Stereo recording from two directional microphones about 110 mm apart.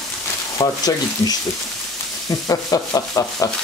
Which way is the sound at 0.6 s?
30° left (ahead or behind).